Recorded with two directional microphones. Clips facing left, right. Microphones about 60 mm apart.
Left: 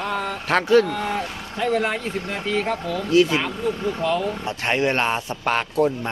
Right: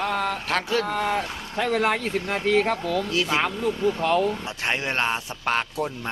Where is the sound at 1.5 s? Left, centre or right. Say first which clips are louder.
Left 1 dB; right.